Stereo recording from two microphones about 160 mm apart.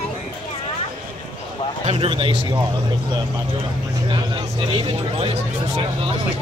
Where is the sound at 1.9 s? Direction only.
35° right (ahead or behind).